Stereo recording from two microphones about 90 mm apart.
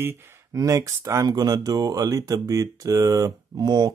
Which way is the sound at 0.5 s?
40° right (ahead or behind).